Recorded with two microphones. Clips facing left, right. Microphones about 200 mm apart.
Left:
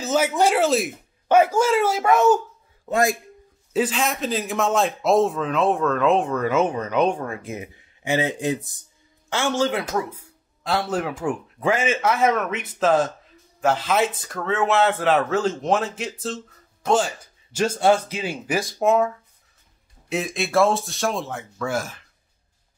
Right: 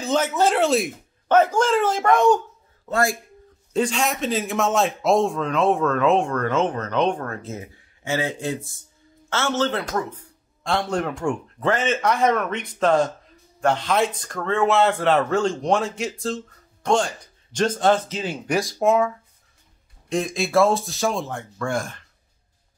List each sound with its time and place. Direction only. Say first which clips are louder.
0.0 s speech: left 1 dB; 10° left (ahead or behind)
2.9 s speech: left 1 dB; 20° left (ahead or behind)
3.7 s a man's voice: even; 5° left (ahead or behind)